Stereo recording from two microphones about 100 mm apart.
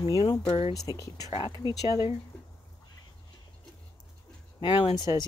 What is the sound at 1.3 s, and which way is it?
Speech, 45° left (ahead or behind).